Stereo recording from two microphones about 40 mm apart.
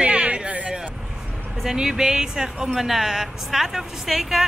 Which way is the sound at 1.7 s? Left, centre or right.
Centre.